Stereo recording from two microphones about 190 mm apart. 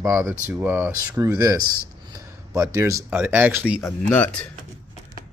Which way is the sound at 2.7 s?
15° right (ahead or behind).